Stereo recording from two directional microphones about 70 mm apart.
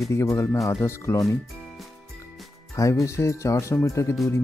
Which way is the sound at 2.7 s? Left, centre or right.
Left.